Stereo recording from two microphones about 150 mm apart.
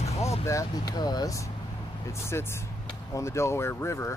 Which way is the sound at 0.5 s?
25° left (ahead or behind).